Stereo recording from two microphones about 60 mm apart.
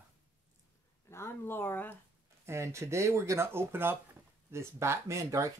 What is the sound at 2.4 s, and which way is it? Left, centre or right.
Speech, right.